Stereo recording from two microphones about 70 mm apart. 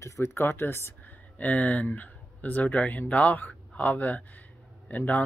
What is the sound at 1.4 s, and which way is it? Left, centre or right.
Speech, left.